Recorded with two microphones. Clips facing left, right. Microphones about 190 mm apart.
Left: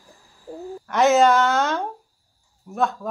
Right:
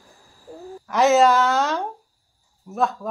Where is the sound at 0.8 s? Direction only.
Centre (ahead or behind).